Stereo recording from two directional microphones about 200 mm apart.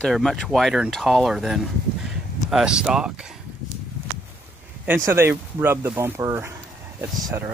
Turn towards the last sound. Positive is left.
turn(degrees=0)  # may be behind; listen again after turning